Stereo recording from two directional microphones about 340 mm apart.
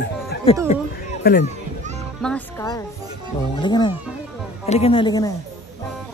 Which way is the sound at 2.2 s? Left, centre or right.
Centre.